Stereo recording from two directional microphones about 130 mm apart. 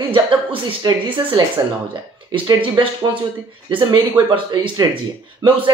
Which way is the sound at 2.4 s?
35° right (ahead or behind).